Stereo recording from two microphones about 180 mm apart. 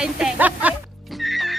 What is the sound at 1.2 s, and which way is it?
Music, centre (ahead or behind).